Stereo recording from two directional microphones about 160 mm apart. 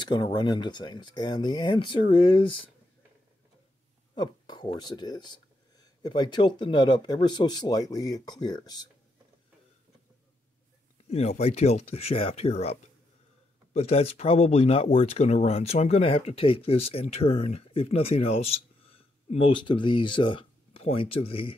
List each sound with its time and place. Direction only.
0.0 s speech: 25° left (ahead or behind)
4.1 s a sound: 25° left (ahead or behind)
4.7 s speech: 25° left (ahead or behind)
11.1 s speech: 40° left (ahead or behind)
13.7 s speech: 40° left (ahead or behind)